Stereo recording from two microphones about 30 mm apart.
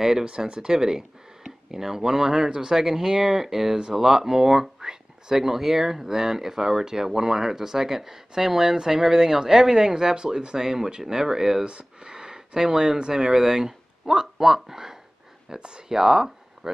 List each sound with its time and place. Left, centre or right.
0.0 s speech: centre
11.6 s speech: right; by 16.7 s centre